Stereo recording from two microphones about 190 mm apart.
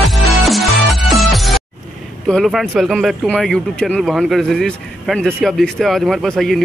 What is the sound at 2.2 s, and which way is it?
Speech, centre (ahead or behind).